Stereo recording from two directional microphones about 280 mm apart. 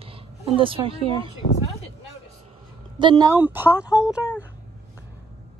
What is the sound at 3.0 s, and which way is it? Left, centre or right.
Speech, centre.